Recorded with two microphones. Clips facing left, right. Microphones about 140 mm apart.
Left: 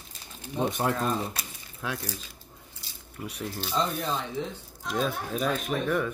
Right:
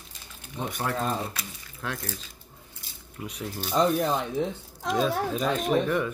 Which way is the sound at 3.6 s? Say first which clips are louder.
Right 6 dB; 55° right (ahead or behind).